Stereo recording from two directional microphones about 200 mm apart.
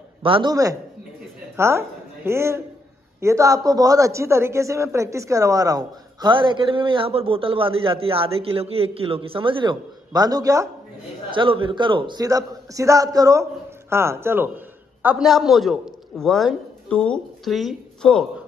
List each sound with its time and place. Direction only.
0.2 s a man's voice: 25° right (ahead or behind)
11.3 s a man's voice: 25° right (ahead or behind); by 18.2 s centre (ahead or behind)